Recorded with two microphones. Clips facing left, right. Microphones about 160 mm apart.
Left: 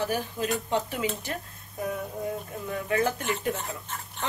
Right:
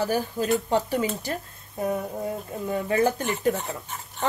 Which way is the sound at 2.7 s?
30° right (ahead or behind).